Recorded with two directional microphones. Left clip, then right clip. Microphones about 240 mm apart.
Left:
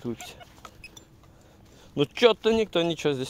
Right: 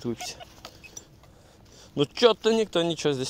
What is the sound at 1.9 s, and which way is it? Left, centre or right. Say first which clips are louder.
Speech: even; centre.